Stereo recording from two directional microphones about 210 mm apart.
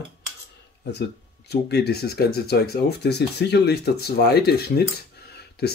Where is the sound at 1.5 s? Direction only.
50° left (ahead or behind).